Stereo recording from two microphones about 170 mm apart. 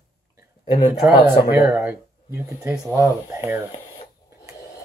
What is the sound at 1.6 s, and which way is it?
Speech, 15° right (ahead or behind).